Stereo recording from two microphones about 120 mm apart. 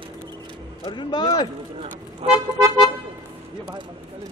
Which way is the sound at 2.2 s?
55° right (ahead or behind).